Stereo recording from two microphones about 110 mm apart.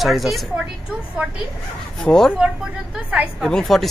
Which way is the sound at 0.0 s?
Centre (ahead or behind).